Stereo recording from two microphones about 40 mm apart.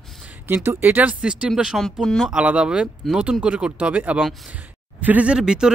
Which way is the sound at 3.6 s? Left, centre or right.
Right.